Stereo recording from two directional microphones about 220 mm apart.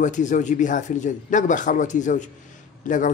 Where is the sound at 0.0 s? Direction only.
35° left (ahead or behind).